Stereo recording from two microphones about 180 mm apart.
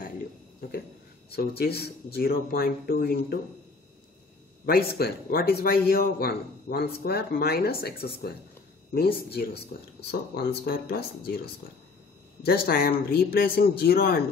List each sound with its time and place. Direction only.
1.6 s a man's voice: 60° left (ahead or behind)
4.6 s a man's voice: 60° left (ahead or behind)
12.4 s a man's voice: 55° left (ahead or behind)